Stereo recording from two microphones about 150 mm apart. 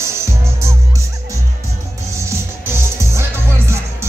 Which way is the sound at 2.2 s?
15° right (ahead or behind).